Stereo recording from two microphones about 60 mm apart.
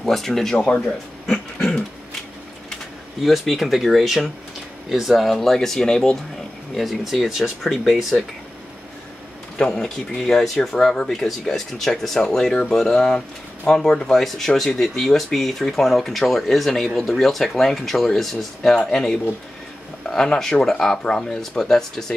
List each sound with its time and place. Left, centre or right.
0.0 s speech: centre
0.6 s speech: centre
1.3 s a sound: centre
3.2 s speech: centre
9.6 s speech: centre